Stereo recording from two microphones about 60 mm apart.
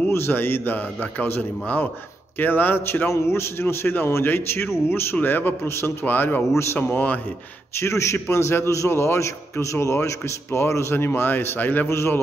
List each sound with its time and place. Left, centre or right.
0.1 s a man's voice: left
3.1 s a man's voice: left
6.0 s a man's voice: left
7.7 s a man's voice: left
11.9 s a man's voice: left